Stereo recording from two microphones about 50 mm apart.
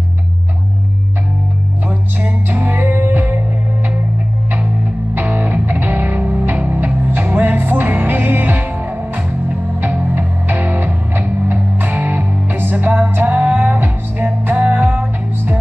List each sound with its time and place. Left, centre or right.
1.9 s music: right
5.2 s music: right